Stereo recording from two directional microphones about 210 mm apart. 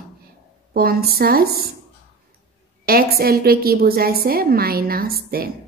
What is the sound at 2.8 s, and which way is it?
A woman's voice, 45° right (ahead or behind).